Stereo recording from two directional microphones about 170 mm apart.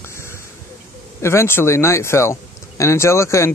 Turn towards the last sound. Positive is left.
turn(degrees=15)  # may be behind; listen again after turning